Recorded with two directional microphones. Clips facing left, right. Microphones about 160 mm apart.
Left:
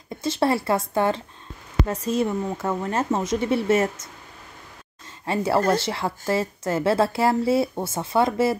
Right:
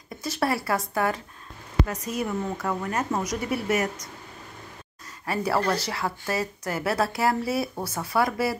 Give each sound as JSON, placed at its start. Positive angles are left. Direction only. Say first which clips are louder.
{"t": 0.2, "sound": "a woman's voice", "louder": "left 5 dB", "side_deg": 25}
{"t": 5.2, "sound": "a woman's voice", "louder": "left 4 dB", "side_deg": 25}